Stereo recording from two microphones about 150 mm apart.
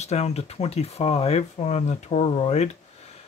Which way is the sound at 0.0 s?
45° left (ahead or behind).